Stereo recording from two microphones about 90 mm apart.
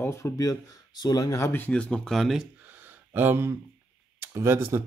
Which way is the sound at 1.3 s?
30° left (ahead or behind).